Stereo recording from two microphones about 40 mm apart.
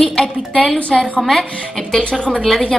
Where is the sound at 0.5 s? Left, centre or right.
Left.